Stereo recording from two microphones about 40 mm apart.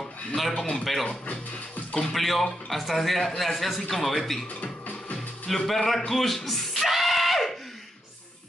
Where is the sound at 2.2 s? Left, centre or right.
Centre.